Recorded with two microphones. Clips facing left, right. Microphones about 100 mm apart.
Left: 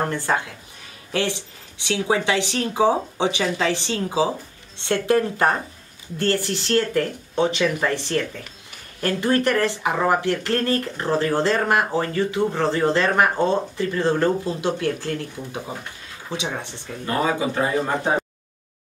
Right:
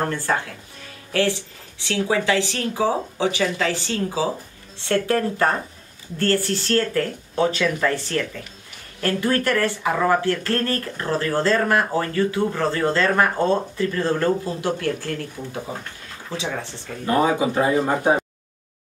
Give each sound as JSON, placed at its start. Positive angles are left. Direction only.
{"t": 0.0, "sound": "speech", "side_deg": 15}
{"t": 16.3, "sound": "speech", "side_deg": 20}
{"t": 17.0, "sound": "speech", "side_deg": -20}